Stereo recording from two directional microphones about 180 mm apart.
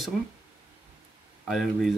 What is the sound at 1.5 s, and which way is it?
Speech, centre (ahead or behind).